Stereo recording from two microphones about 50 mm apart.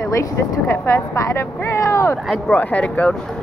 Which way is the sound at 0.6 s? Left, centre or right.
Left.